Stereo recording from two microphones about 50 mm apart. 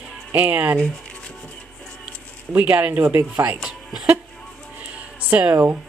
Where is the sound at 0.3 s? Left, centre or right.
Right.